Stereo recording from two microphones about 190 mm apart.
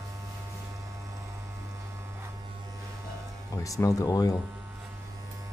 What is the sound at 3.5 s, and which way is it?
Speech, 15° left (ahead or behind).